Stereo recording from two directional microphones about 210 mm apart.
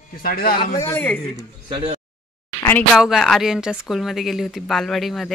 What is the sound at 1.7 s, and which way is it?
Speech, 20° right (ahead or behind).